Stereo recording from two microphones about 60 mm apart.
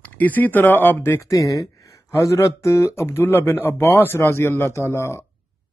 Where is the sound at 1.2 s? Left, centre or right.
Left.